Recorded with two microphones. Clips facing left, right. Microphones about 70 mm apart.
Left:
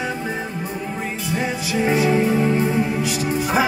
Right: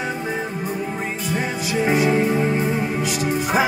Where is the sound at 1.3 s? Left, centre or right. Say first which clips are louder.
Left 1 dB; right.